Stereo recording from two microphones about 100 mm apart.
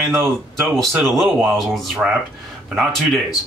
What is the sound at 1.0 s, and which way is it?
Speech, centre (ahead or behind).